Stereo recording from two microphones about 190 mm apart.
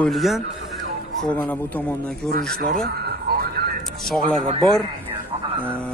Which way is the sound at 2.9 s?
55° right (ahead or behind).